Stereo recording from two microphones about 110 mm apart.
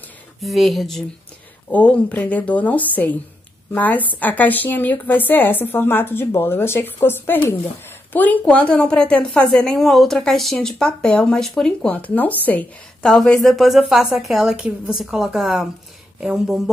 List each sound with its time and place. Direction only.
0.4 s a woman's voice: centre (ahead or behind)
1.7 s a woman's voice: 10° left (ahead or behind); by 16.6 s 5° right (ahead or behind)